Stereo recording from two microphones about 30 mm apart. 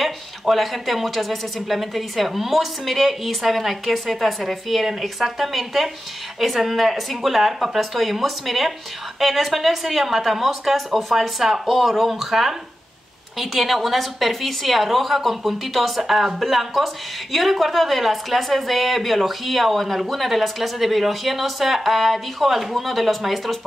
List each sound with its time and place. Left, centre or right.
0.0 s a woman's voice: centre